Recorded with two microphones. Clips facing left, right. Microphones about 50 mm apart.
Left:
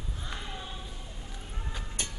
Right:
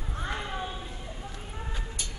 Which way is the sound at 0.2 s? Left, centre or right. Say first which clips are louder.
Right 8 dB; right.